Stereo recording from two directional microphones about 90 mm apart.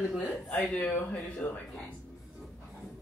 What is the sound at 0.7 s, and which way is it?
Speech, 15° left (ahead or behind).